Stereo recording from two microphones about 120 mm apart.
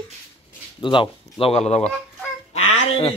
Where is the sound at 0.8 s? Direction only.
45° left (ahead or behind); by 1.9 s 65° left (ahead or behind).